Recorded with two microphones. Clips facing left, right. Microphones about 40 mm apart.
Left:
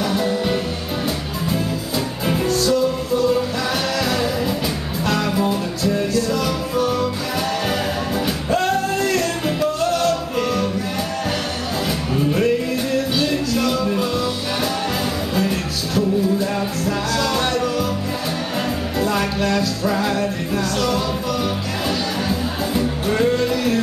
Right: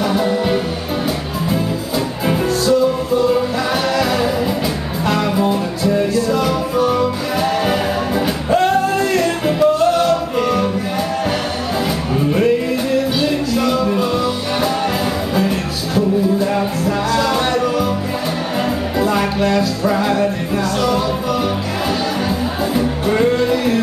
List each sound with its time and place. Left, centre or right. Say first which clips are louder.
0.0 s music: right 4 dB; centre
2.2 s music: right 3 dB; centre
5.0 s music: right 3 dB; centre
8.6 s music: right 4 dB; centre
12.3 s music: right 4 dB; centre
15.3 s music: right 3 dB; centre
18.9 s music: right 4 dB; centre
22.8 s music: right 3 dB; centre